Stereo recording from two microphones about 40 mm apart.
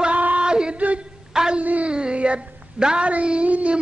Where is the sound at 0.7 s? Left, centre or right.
Right.